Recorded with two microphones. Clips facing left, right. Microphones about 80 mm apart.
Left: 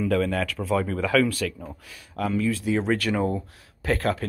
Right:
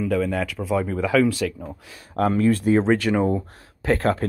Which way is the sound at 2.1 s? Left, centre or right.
Right.